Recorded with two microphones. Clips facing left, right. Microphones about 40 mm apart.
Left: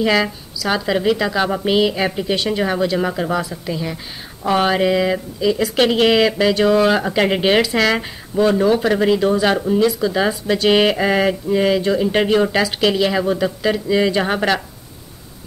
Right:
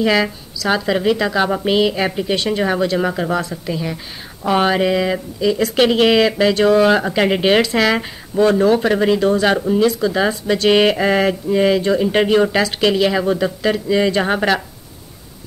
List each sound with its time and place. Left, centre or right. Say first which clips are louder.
0.0 s speech: right 1 dB; centre